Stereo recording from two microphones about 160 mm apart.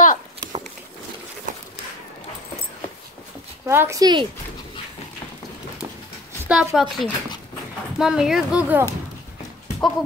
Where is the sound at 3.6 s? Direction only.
15° right (ahead or behind).